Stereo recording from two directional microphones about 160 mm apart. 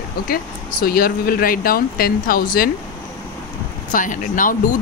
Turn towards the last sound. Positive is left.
turn(degrees=55)  # may be behind; listen again after turning